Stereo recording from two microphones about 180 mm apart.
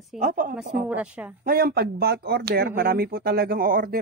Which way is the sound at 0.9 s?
10° right (ahead or behind).